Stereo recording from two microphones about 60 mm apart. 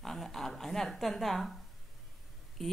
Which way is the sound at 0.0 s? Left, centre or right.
Centre.